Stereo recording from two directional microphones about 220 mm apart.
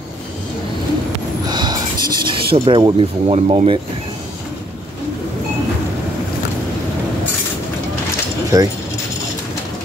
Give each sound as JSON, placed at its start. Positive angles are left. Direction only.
{"t": 1.5, "sound": "speech", "side_deg": -20}
{"t": 8.5, "sound": "speech", "side_deg": -15}